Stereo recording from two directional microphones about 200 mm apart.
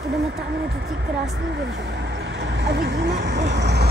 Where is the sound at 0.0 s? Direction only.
55° right (ahead or behind).